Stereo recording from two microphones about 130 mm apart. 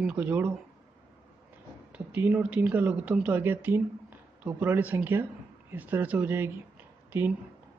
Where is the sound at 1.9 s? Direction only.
10° right (ahead or behind).